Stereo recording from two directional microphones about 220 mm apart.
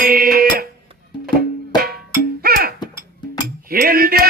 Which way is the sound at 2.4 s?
45° right (ahead or behind).